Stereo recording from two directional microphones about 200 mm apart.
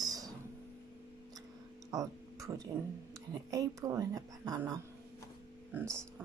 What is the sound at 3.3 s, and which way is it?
Speech, 20° right (ahead or behind).